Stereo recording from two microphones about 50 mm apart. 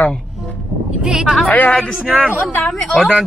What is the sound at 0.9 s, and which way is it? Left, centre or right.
Speech, centre.